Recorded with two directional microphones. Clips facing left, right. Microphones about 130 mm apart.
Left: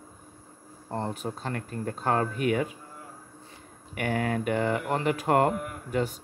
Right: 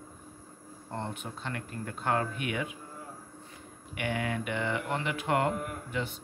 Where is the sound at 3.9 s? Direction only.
40° left (ahead or behind).